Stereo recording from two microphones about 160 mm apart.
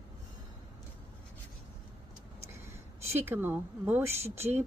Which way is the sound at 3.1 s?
15° right (ahead or behind).